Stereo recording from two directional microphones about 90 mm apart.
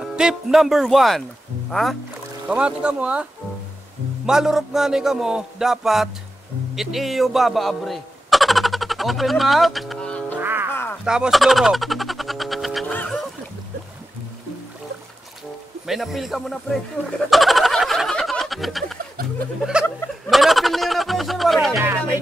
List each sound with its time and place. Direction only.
0.0 s music: 10° right (ahead or behind)
2.4 s speech: 15° right (ahead or behind)
4.3 s music: 5° right (ahead or behind)
6.7 s speech: centre (ahead or behind)
10.0 s music: 15° left (ahead or behind)
10.4 s music: 25° right (ahead or behind)
10.7 s a sound: 25° left (ahead or behind)
11.1 s a sound: 5° right (ahead or behind)
12.8 s music: 20° left (ahead or behind)
15.9 s music: centre (ahead or behind)
17.3 s a sound: centre (ahead or behind)